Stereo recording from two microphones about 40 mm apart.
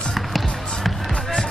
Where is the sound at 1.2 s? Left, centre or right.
Centre.